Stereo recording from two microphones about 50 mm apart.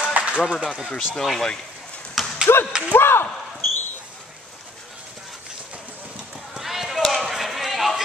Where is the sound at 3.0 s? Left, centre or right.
Left.